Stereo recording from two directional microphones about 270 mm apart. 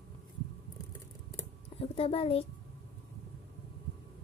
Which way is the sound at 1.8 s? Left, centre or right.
Left.